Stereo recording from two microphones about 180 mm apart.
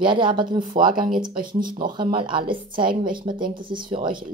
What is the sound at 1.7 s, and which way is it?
Speech, 25° right (ahead or behind).